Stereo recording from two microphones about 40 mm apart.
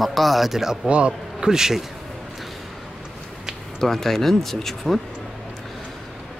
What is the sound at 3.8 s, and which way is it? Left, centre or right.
Speech, centre.